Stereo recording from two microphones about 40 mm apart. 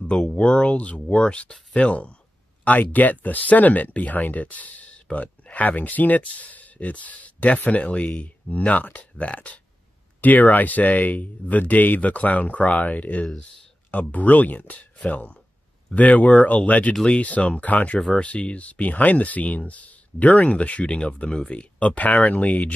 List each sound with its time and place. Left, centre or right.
0.0 s speech: left
2.6 s speech: left